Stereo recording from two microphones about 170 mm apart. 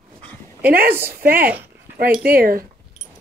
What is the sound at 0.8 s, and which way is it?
Speech, 10° right (ahead or behind).